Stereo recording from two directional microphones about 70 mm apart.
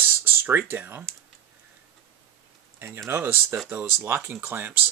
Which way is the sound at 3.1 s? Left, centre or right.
Right.